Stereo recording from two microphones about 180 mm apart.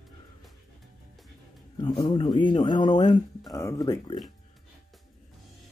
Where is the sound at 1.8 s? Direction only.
25° left (ahead or behind).